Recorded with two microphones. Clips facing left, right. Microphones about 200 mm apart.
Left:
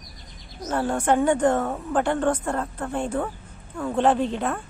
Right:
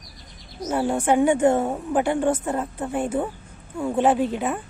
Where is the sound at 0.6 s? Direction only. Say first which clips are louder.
Right 1 dB; 10° right (ahead or behind).